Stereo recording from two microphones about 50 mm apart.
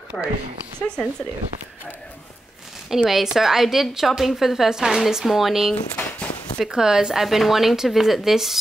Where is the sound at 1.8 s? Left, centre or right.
Left.